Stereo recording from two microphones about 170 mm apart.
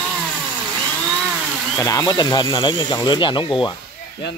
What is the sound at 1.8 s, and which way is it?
Speech, 20° left (ahead or behind).